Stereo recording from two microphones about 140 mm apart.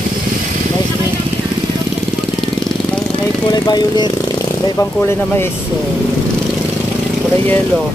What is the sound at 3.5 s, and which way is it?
Speech, 30° left (ahead or behind).